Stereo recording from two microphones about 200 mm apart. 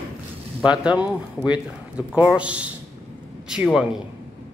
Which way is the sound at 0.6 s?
5° right (ahead or behind).